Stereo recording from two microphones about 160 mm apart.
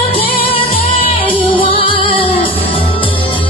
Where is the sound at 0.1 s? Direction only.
35° left (ahead or behind).